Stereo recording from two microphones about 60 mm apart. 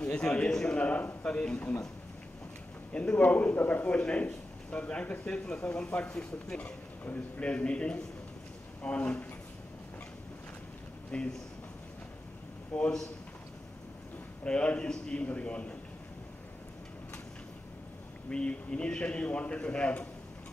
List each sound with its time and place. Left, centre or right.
0.2 s a man's voice: centre
2.9 s a man's voice: left
11.1 s speech: centre
12.7 s a man's voice: centre
14.4 s a man's voice: centre
18.3 s a man's voice: centre